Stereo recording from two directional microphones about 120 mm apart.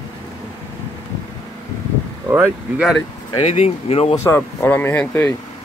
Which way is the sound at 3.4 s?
60° left (ahead or behind).